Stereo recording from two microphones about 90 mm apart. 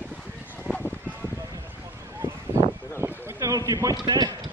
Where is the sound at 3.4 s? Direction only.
40° right (ahead or behind).